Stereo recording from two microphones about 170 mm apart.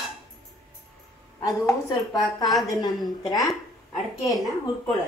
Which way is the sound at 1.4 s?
20° left (ahead or behind).